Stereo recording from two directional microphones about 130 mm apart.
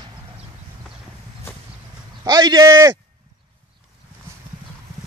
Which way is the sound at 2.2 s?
30° right (ahead or behind).